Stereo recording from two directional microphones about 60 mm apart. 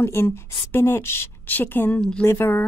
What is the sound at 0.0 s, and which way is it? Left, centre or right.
A woman's voice, left.